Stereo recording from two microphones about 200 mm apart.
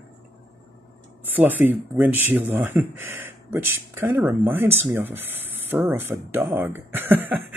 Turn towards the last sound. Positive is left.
turn(degrees=-10)  # may be behind; listen again after turning